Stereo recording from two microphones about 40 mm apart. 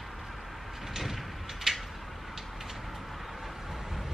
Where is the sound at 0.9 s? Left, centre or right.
Centre.